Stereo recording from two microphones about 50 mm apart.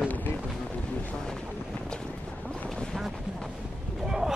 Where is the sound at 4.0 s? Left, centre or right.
Centre.